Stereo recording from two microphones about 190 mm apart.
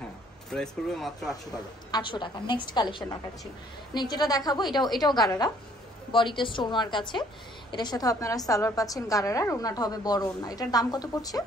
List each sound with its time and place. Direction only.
0.5 s speech: centre (ahead or behind)
1.9 s a woman's voice: 25° left (ahead or behind)